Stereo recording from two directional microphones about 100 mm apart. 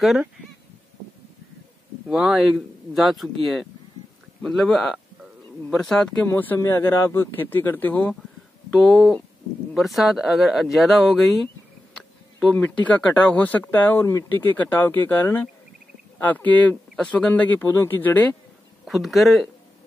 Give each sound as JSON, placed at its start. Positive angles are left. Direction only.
{"t": 2.0, "sound": "speech", "side_deg": -5}
{"t": 4.4, "sound": "speech", "side_deg": 5}
{"t": 6.2, "sound": "speech", "side_deg": 20}
{"t": 11.9, "sound": "a sound", "side_deg": 10}
{"t": 12.5, "sound": "speech", "side_deg": 15}
{"t": 18.9, "sound": "speech", "side_deg": 0}